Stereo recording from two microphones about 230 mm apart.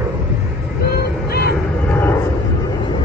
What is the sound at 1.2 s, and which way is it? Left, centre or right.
Vehicle, left.